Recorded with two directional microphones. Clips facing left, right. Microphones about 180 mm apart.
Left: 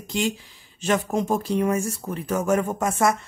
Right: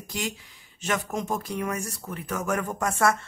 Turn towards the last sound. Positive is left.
turn(degrees=20)  # may be behind; listen again after turning